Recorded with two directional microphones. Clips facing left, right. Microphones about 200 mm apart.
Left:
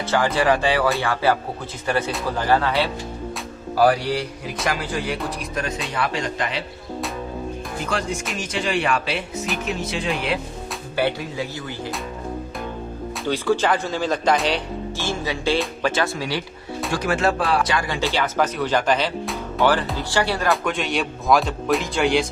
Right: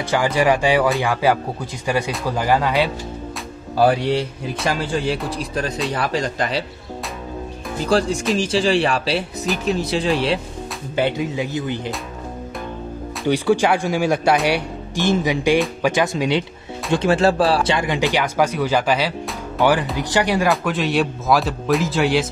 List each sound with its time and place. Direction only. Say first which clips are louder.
0.1 s a man's voice: right 2 dB; 15° right (ahead or behind); by 6.6 s 35° right (ahead or behind)
7.8 s speech: right 9 dB; 35° right (ahead or behind)
11.0 s a man's voice: right 3 dB; 20° right (ahead or behind)
13.3 s speech: right 3 dB; 15° right (ahead or behind)
20.4 s speech: right 3 dB; centre (ahead or behind)